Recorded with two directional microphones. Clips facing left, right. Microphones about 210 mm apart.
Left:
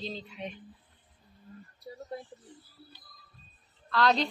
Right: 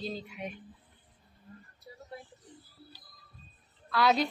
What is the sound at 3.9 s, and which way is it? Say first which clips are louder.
Speech: even; 10° right (ahead or behind).